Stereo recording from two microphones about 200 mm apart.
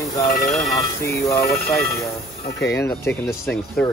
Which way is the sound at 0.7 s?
15° left (ahead or behind).